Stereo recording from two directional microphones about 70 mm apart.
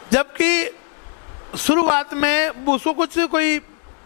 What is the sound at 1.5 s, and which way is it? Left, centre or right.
A man's voice, centre.